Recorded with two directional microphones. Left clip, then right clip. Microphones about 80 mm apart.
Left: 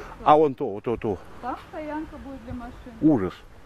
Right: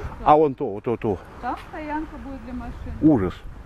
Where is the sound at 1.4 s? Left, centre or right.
Right.